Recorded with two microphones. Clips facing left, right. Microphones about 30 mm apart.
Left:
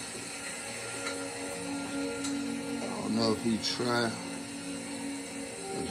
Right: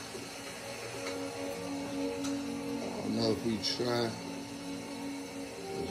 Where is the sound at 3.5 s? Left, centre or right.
Left.